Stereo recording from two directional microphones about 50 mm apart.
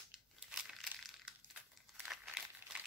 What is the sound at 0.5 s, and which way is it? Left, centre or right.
Crumpling, centre.